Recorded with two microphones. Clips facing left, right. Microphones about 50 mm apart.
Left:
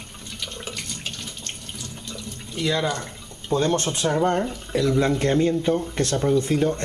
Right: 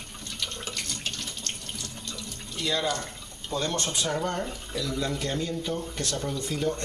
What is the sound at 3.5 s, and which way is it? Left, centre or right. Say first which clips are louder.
Speech: left 7 dB; left.